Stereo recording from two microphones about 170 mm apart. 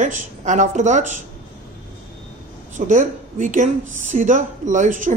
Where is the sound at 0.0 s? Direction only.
45° right (ahead or behind).